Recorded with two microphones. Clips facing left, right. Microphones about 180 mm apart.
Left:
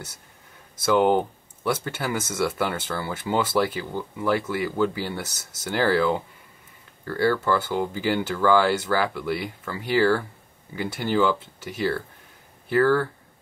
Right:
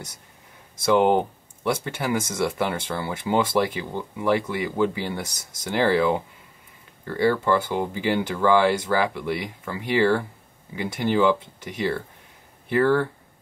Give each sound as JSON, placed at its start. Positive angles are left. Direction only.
{"t": 0.9, "sound": "speech", "side_deg": -20}
{"t": 12.6, "sound": "speech", "side_deg": -20}